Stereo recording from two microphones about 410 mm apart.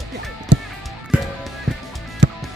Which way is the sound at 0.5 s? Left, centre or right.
Right.